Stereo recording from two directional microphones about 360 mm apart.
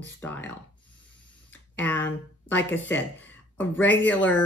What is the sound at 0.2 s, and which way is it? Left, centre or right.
Speech, centre.